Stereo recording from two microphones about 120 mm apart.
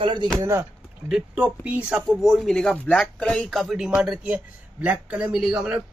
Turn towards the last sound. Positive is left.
turn(degrees=-5)  # may be behind; listen again after turning